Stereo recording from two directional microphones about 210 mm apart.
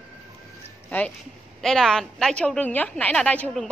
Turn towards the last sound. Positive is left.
turn(degrees=5)  # may be behind; listen again after turning